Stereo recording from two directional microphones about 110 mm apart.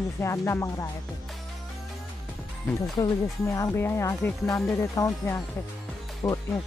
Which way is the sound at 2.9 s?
30° left (ahead or behind).